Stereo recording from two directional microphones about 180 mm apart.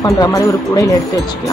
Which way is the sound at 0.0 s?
20° left (ahead or behind).